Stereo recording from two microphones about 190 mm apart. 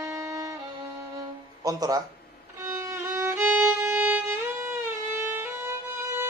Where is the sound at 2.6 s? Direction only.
15° right (ahead or behind).